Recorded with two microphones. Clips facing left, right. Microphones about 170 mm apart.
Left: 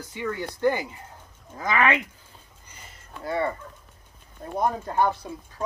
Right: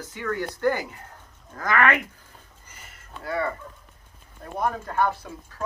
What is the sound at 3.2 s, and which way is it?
Speech, 25° left (ahead or behind).